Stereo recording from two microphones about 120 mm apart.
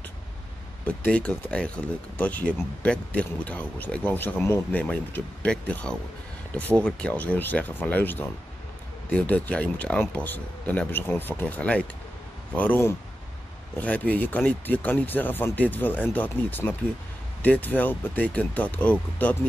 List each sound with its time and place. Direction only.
0.8 s speech: 10° left (ahead or behind)